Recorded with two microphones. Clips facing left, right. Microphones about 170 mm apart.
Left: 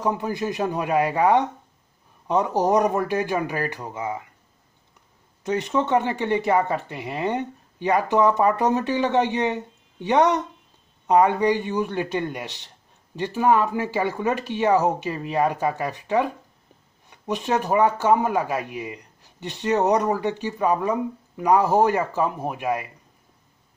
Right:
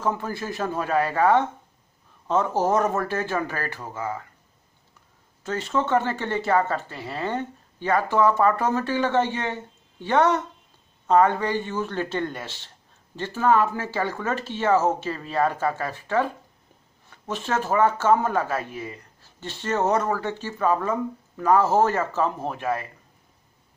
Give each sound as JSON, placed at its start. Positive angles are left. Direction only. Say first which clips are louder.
{"t": 0.0, "sound": "speech", "louder": "left 3 dB", "side_deg": 15}
{"t": 5.4, "sound": "speech", "louder": "left 3 dB", "side_deg": 15}